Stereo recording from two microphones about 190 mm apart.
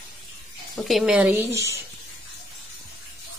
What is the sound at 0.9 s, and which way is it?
Speech, centre (ahead or behind).